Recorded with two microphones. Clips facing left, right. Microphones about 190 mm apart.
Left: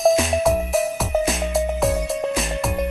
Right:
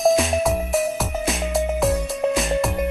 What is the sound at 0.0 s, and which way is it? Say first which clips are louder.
Music: left 1 dB; centre (ahead or behind).